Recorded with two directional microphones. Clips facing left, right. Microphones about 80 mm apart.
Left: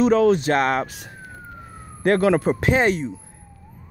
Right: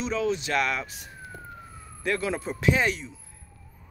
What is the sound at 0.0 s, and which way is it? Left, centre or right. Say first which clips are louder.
Speech: left 11 dB; left.